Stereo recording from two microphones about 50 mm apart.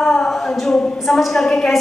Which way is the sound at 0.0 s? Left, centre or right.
Centre.